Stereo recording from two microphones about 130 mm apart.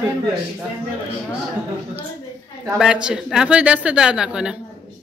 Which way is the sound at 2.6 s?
5° right (ahead or behind).